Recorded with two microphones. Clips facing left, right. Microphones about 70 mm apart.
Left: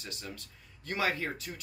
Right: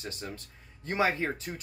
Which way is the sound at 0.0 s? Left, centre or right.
Right.